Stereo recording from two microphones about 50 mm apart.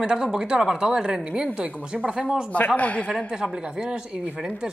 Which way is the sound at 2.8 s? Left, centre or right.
Left.